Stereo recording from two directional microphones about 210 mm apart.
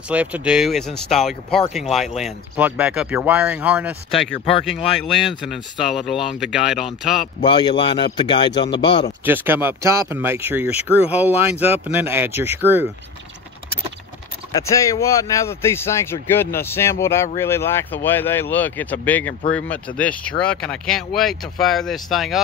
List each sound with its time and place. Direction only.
0.1 s speech: 5° right (ahead or behind)
7.4 s speech: 20° left (ahead or behind)
9.2 s speech: 10° right (ahead or behind)
14.5 s a man's voice: 15° left (ahead or behind)